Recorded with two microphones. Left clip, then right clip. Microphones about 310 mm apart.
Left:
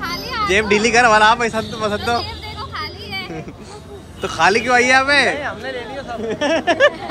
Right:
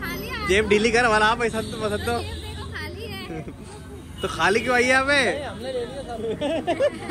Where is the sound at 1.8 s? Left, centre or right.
Left.